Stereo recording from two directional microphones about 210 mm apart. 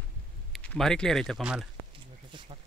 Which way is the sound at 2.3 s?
25° right (ahead or behind).